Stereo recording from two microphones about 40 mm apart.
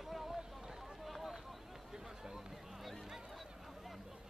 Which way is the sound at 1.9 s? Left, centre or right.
Centre.